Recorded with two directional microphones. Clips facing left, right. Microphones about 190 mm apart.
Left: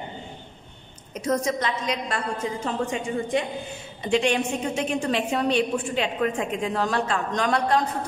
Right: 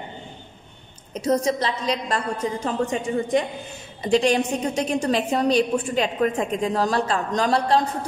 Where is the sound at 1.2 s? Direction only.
35° right (ahead or behind).